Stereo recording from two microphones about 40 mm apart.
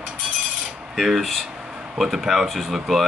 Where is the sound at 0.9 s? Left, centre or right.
Centre.